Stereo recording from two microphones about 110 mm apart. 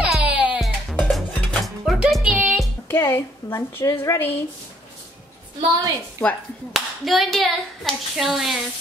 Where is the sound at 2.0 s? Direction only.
5° right (ahead or behind).